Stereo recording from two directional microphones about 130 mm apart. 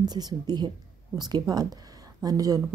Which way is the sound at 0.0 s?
30° right (ahead or behind).